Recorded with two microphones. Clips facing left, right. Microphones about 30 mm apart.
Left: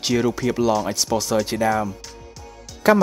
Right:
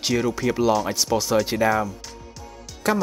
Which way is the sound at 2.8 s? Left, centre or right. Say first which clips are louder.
Left 7 dB; centre.